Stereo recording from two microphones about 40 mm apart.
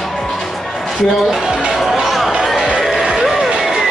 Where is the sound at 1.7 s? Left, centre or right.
Centre.